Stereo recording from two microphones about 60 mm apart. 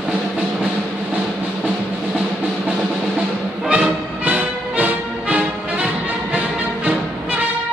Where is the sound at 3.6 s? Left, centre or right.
Centre.